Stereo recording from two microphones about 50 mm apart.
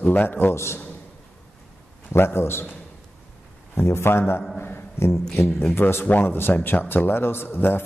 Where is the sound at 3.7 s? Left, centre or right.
Left.